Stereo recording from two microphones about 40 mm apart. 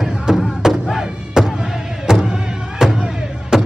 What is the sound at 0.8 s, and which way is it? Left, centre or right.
Thump, centre.